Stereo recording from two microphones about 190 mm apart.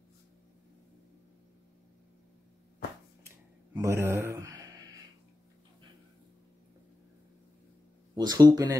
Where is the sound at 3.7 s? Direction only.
15° right (ahead or behind).